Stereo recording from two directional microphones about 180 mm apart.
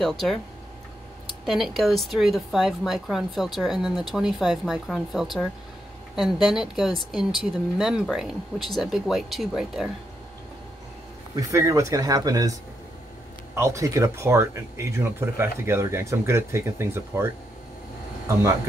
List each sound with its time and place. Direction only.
0.0 s speech: centre (ahead or behind)
1.4 s speech: centre (ahead or behind)
11.3 s speech: 20° right (ahead or behind)
13.6 s speech: 15° right (ahead or behind)